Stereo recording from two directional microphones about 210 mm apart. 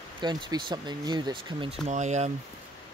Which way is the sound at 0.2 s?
20° right (ahead or behind).